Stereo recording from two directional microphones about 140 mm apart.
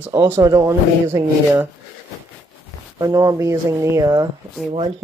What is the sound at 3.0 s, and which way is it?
Speech, 25° right (ahead or behind).